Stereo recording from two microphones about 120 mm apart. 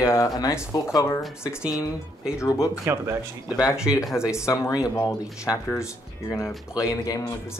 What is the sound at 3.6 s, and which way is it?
Speech, 5° right (ahead or behind).